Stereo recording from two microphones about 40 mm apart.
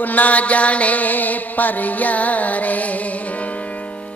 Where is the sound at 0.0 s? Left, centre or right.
Left.